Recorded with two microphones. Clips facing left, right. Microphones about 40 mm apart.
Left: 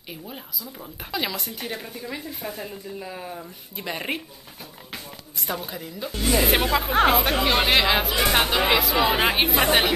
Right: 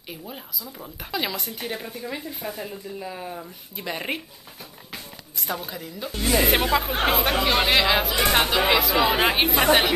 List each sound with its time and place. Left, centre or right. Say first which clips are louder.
0.1 s speech: even; centre